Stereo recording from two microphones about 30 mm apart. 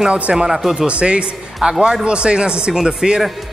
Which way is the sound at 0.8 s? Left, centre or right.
Right.